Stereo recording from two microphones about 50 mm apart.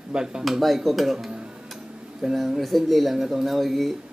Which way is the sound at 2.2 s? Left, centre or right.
Centre.